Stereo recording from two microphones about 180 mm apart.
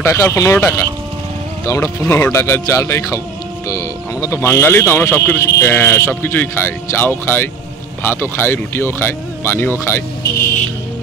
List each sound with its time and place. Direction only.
0.0 s speech: 15° left (ahead or behind)